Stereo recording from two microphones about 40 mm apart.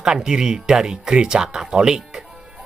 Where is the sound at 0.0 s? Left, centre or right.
Centre.